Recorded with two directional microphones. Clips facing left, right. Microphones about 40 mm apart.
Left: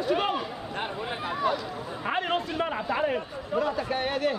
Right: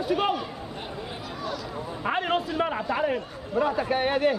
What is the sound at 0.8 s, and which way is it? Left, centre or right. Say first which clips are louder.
Speech: left 7 dB; left.